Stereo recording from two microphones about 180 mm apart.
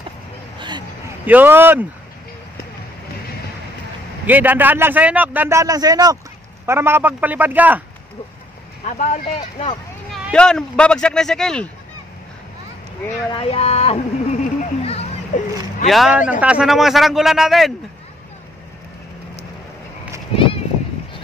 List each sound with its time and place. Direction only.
0.6 s a sound: 25° right (ahead or behind)
1.2 s a man's voice: 10° right (ahead or behind)
4.3 s a man's voice: 10° right (ahead or behind)
8.8 s speech: 40° left (ahead or behind)
10.1 s speech: 5° left (ahead or behind)
13.3 s speech: 30° left (ahead or behind)
14.9 s a sound: 35° left (ahead or behind)
15.9 s speech: 5° right (ahead or behind)
20.3 s a sound: 30° left (ahead or behind)